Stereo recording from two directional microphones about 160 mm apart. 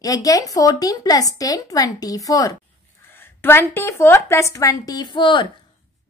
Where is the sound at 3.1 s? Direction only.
15° left (ahead or behind).